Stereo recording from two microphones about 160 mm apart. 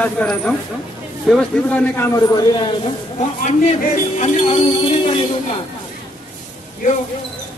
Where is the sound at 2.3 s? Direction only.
30° left (ahead or behind).